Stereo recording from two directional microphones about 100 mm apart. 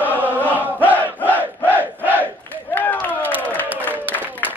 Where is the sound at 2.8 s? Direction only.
20° left (ahead or behind).